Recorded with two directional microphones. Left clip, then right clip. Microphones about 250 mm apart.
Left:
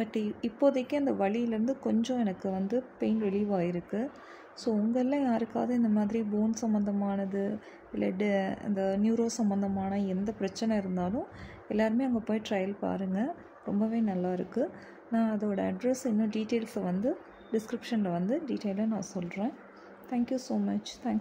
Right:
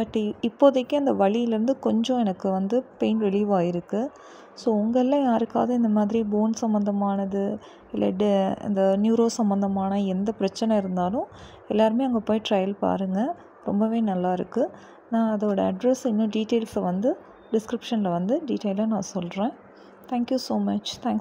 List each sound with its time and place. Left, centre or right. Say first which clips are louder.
0.0 s a woman's voice: right 7 dB; centre